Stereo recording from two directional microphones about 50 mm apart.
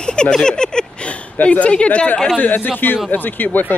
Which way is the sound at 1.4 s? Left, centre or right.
Left.